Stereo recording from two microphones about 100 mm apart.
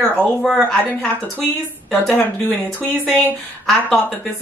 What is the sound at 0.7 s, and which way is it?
Speech, 15° left (ahead or behind).